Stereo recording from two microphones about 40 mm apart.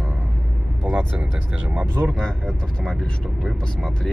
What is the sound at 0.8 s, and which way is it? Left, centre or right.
Speech, right.